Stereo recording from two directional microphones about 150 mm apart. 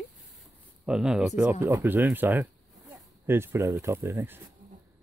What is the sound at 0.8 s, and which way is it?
Speech, 5° right (ahead or behind).